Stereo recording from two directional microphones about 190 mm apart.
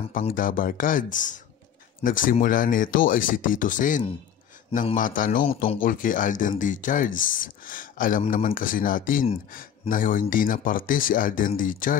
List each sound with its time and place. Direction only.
0.2 s speech: 45° left (ahead or behind)